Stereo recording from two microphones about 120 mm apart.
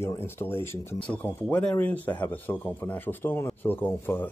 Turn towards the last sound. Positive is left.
turn(degrees=20)  # may be behind; listen again after turning